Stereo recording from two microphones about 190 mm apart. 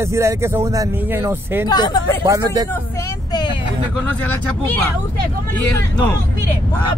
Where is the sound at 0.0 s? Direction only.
15° right (ahead or behind).